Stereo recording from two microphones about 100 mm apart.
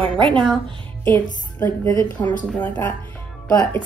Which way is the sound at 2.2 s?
30° left (ahead or behind).